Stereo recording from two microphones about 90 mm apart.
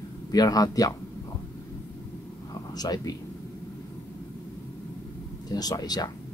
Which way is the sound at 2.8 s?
45° left (ahead or behind).